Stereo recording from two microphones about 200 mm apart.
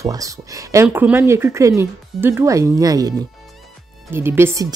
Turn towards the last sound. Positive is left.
turn(degrees=-15)  # may be behind; listen again after turning